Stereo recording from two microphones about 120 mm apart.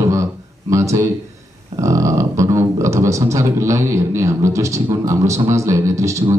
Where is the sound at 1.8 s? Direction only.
25° right (ahead or behind).